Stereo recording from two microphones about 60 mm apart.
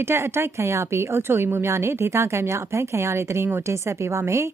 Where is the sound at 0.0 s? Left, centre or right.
Right.